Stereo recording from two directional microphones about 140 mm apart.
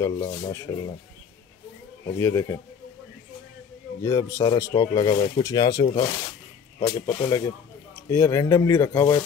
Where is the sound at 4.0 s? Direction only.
25° left (ahead or behind).